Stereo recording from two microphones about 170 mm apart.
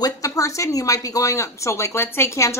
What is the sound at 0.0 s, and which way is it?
A woman's voice, 20° left (ahead or behind).